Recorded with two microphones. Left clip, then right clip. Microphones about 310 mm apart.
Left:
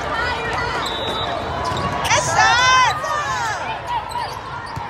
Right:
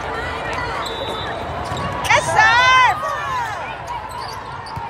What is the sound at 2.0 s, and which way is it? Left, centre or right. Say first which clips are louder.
Run: right 2 dB; right.